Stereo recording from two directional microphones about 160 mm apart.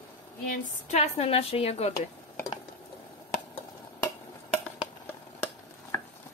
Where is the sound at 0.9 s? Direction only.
40° left (ahead or behind).